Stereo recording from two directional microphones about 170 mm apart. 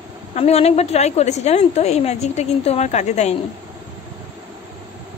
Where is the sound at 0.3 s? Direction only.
35° left (ahead or behind).